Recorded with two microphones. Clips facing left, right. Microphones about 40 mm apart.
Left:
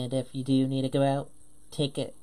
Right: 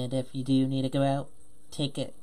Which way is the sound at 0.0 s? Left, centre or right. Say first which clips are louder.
Left 1 dB; centre.